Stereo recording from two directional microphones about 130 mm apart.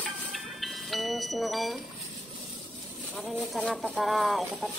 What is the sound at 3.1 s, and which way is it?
Music, centre (ahead or behind).